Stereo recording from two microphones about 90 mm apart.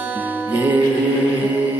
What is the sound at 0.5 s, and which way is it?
Music, 20° right (ahead or behind).